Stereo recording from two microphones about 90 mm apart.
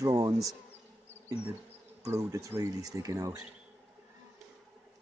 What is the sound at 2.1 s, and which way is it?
Speech, 35° right (ahead or behind).